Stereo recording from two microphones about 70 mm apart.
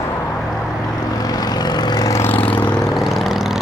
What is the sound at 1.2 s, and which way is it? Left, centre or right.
Vehicle, left.